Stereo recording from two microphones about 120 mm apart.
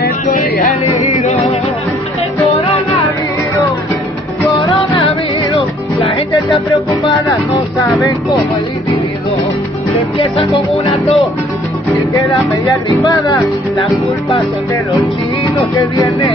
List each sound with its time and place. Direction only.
1.0 s music: 65° left (ahead or behind)
5.6 s music: 50° left (ahead or behind)
10.1 s music: 45° left (ahead or behind)
10.9 s music: 60° left (ahead or behind)
13.0 s speech: 35° left (ahead or behind)